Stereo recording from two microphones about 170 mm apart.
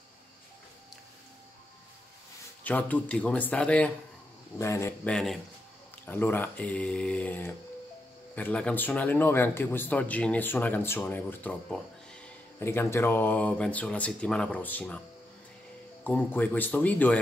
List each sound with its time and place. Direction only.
2.6 s speech: 10° left (ahead or behind)
5.1 s speech: centre (ahead or behind)
6.0 s speech: 10° left (ahead or behind)
16.0 s speech: 10° left (ahead or behind)